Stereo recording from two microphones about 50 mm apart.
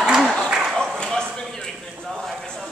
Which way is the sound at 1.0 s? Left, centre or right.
Centre.